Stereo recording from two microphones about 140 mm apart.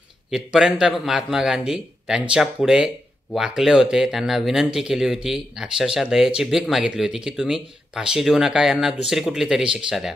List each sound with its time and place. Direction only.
0.3 s speech: 5° right (ahead or behind)